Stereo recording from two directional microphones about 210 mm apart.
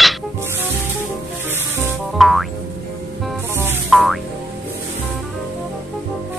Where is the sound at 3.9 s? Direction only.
Centre (ahead or behind).